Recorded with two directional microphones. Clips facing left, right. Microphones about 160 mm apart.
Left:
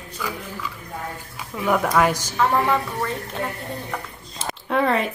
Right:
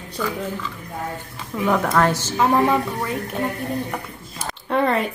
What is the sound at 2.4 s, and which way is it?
Speech, 15° right (ahead or behind).